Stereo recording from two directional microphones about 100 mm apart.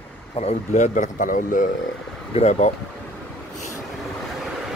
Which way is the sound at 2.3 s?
90° left.